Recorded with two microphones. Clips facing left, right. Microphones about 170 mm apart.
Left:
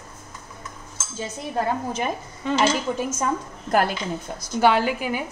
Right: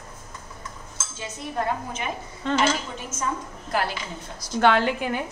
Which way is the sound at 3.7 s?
50° left (ahead or behind).